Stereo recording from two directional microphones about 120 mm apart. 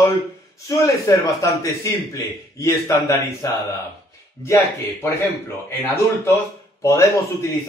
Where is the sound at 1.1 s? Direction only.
25° left (ahead or behind).